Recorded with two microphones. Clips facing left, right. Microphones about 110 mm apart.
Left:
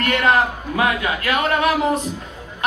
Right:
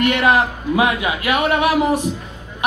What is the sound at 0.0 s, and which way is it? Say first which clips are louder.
A man's voice: right 2 dB; 20° right (ahead or behind).